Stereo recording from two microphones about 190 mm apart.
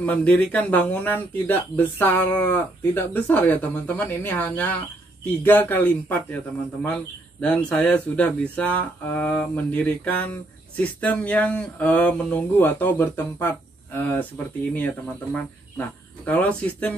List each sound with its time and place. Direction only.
0.0 s a man's voice: 10° left (ahead or behind)
15.3 s speech: 10° left (ahead or behind)